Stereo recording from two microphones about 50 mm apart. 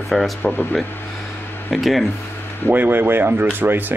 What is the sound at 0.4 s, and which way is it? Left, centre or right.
Speech, left.